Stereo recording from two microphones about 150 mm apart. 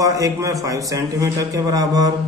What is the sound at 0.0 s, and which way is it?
Mantra, 20° right (ahead or behind).